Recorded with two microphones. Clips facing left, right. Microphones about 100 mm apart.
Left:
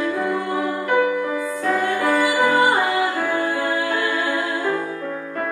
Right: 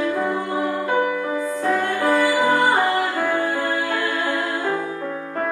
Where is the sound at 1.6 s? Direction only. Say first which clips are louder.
Left 1 dB; 20° right (ahead or behind).